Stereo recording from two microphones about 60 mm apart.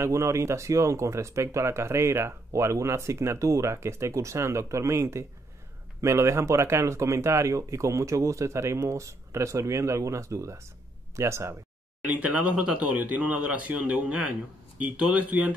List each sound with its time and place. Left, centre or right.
0.0 s speech: right
12.1 s speech: right